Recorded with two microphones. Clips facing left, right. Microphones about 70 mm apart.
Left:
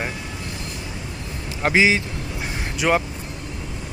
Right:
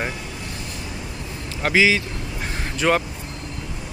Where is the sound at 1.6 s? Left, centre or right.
Left.